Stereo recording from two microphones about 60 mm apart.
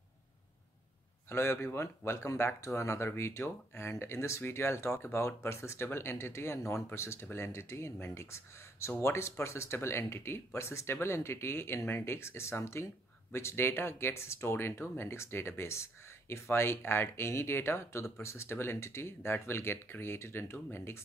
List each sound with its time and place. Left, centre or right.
1.3 s speech: left